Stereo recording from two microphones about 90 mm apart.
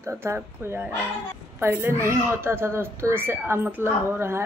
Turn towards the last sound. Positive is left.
turn(degrees=-25)  # may be behind; listen again after turning